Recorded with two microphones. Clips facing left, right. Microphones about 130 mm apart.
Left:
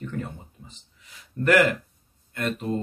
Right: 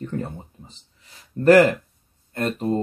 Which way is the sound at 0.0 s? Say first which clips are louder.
Right 4 dB; 35° right (ahead or behind).